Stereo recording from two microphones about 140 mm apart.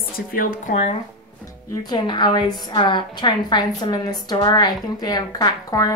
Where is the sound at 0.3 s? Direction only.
80° left.